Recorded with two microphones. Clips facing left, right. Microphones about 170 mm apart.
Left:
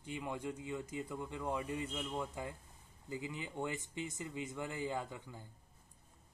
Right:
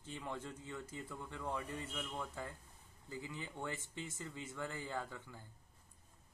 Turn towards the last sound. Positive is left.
turn(degrees=15)  # may be behind; listen again after turning